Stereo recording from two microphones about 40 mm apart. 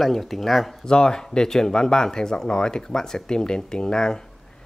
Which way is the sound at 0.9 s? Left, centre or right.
Centre.